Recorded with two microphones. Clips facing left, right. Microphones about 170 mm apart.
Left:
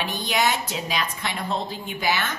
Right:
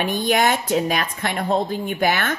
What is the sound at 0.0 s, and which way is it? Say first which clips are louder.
A woman's voice: right 5 dB; 50° right (ahead or behind).